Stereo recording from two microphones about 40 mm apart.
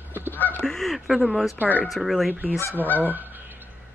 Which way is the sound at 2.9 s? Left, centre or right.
Right.